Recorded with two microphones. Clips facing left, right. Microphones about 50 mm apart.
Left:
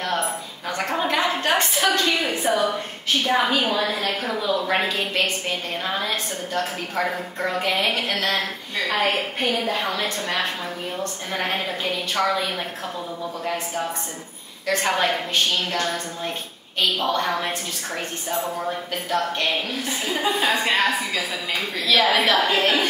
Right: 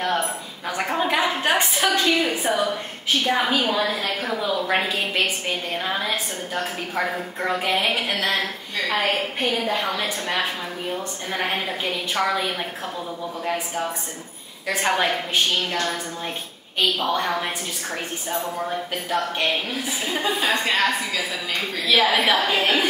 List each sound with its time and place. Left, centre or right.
0.7 s a woman's voice: centre
14.7 s a woman's voice: centre
17.0 s a woman's voice: centre
19.0 s a woman's voice: centre
21.8 s a woman's voice: centre